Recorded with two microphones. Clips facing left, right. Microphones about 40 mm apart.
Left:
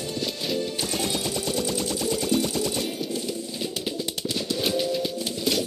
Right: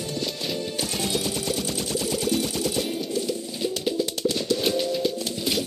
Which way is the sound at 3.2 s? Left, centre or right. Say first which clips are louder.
Right 3 dB; centre.